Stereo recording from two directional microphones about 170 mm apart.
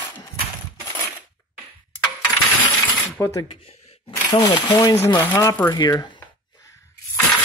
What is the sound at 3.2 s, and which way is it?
Speech, 20° left (ahead or behind).